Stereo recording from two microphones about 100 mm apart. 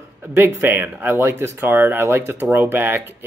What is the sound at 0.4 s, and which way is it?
Speech, 20° right (ahead or behind).